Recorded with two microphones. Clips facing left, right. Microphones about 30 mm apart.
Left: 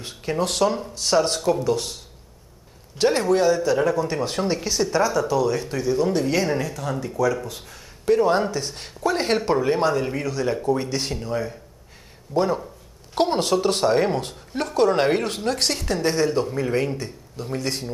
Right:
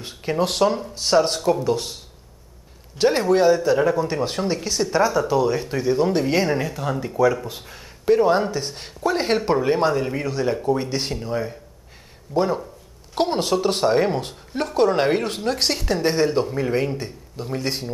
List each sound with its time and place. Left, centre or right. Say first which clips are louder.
0.0 s speech: right 2 dB; centre
3.0 s speech: right 2 dB; centre
4.9 s speech: right 3 dB; centre
16.9 s speech: right 1 dB; centre